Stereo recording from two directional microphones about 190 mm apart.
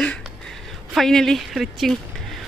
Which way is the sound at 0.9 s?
Centre (ahead or behind).